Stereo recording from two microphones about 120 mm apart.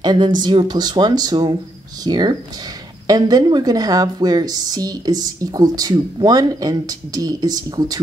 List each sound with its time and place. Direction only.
0.0 s a woman's voice: 35° right (ahead or behind)